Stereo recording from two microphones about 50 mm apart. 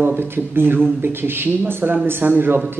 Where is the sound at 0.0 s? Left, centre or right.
Right.